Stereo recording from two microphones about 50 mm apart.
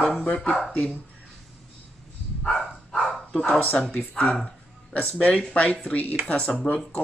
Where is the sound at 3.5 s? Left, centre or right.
Left.